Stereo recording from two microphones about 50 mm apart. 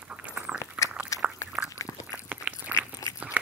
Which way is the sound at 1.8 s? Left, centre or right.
Left.